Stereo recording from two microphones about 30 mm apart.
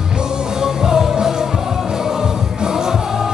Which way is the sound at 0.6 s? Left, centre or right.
Centre.